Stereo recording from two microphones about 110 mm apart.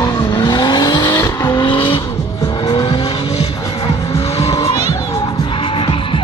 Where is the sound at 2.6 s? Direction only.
50° left (ahead or behind).